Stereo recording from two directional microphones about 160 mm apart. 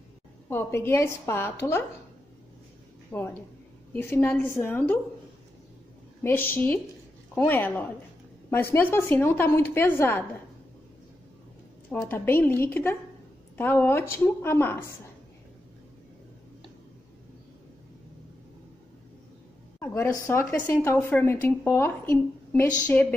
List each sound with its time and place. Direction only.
0.5 s speech: 15° left (ahead or behind)
3.1 s speech: 10° left (ahead or behind)
6.2 s speech: 10° left (ahead or behind)
11.9 s speech: 15° left (ahead or behind)
19.8 s speech: 15° left (ahead or behind)